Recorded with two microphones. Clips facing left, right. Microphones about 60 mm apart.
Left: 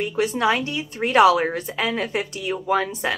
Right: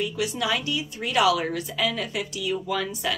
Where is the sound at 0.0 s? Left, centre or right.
Left.